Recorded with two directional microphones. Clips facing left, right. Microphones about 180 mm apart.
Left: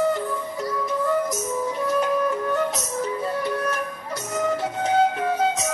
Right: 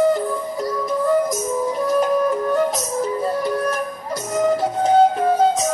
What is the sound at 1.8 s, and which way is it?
Music, 40° right (ahead or behind).